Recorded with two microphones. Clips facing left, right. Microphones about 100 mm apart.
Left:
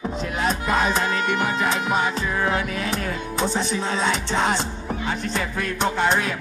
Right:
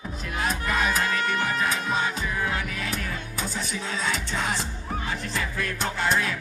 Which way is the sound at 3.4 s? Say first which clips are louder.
Left 9 dB; 75° left (ahead or behind).